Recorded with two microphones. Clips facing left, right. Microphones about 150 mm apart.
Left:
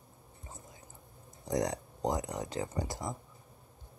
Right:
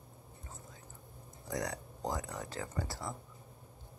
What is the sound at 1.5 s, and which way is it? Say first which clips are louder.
Speech: left 6 dB; 20° left (ahead or behind).